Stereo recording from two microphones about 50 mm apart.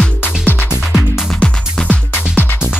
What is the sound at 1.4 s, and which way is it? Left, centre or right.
Music, centre.